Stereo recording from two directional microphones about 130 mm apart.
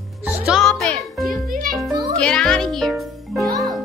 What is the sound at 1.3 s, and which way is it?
Music, 90° right.